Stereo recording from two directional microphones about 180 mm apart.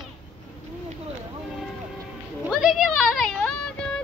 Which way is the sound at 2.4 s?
Centre (ahead or behind).